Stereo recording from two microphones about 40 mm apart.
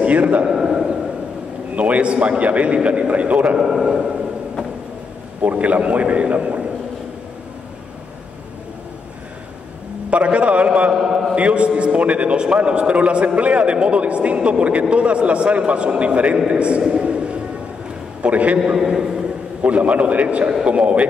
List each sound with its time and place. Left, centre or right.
0.0 s a man's voice: right
0.5 s a man's voice: centre
1.8 s a man's voice: right
3.5 s a man's voice: centre
5.4 s a man's voice: right
10.1 s a man's voice: right
11.1 s a man's voice: centre
11.3 s a man's voice: right
17.0 s music: right
18.2 s a man's voice: right
18.7 s a man's voice: centre
19.6 s a man's voice: right